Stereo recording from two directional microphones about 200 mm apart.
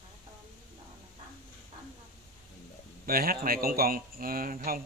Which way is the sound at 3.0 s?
45° right (ahead or behind).